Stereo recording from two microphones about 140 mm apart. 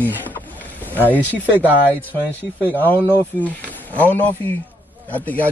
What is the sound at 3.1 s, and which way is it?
Speech, 10° left (ahead or behind).